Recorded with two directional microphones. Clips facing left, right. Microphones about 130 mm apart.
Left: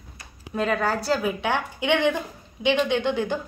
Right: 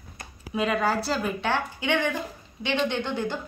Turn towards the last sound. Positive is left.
turn(degrees=15)  # may be behind; listen again after turning